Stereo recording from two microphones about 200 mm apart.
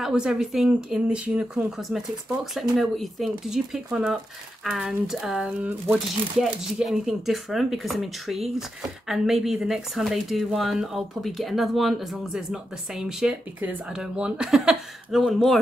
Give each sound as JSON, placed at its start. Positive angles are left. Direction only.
{"t": 0.0, "sound": "speech", "side_deg": -5}